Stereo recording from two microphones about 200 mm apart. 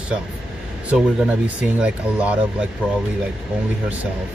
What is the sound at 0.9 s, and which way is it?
Speech, 5° right (ahead or behind).